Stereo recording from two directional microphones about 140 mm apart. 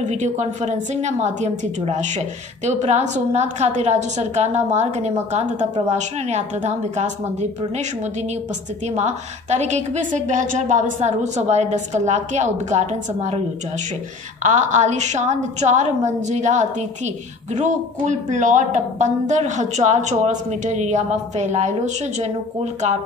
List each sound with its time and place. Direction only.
0.0 s a woman's voice: 55° right (ahead or behind)
8.9 s a woman's voice: 55° right (ahead or behind)
14.4 s a woman's voice: 60° right (ahead or behind)